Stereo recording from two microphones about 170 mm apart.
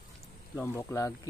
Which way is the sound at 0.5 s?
15° left (ahead or behind).